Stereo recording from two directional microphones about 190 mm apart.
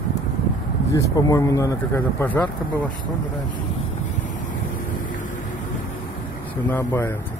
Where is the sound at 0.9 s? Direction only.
15° left (ahead or behind).